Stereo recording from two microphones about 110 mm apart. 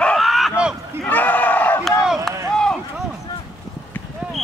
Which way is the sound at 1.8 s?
Centre (ahead or behind).